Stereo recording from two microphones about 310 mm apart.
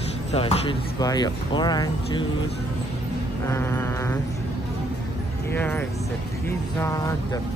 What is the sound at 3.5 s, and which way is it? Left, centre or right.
Speech, centre.